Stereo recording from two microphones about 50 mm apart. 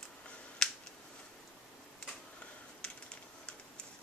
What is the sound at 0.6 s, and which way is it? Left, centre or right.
Finger snapping, centre.